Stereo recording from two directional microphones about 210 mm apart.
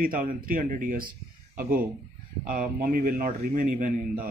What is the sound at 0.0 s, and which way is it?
A man's voice, 40° right (ahead or behind).